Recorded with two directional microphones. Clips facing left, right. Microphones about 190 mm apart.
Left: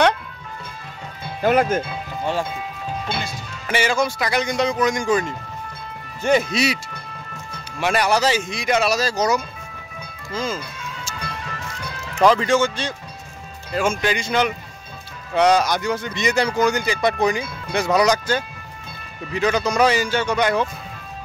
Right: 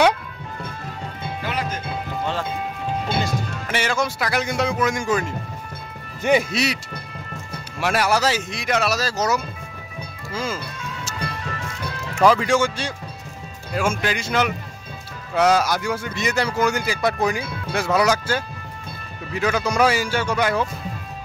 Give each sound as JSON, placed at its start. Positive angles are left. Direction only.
{"t": 1.4, "sound": "speech", "side_deg": 50}
{"t": 3.1, "sound": "music", "side_deg": -45}
{"t": 3.6, "sound": "speech", "side_deg": 0}
{"t": 6.5, "sound": "speech", "side_deg": 0}
{"t": 7.8, "sound": "a man's voice", "side_deg": -5}
{"t": 12.2, "sound": "a man's voice", "side_deg": -5}